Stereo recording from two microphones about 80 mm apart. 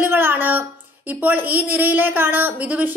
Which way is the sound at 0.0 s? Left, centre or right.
Right.